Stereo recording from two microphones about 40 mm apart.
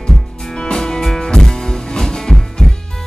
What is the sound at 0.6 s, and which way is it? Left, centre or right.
Music, centre.